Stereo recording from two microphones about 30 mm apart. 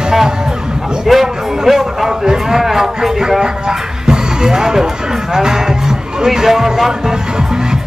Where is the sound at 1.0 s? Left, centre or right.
Centre.